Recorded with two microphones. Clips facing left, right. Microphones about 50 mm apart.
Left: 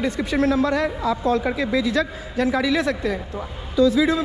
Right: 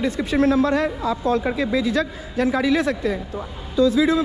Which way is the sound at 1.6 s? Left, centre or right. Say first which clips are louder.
Even; left.